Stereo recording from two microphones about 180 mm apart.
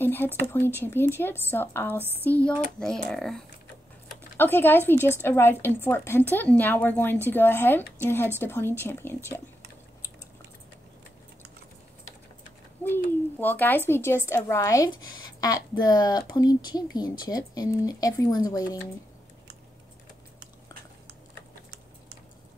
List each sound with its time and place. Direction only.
0.0 s a sound: 10° left (ahead or behind)
0.7 s a woman's voice: 10° left (ahead or behind)
12.8 s a woman's voice: 10° left (ahead or behind)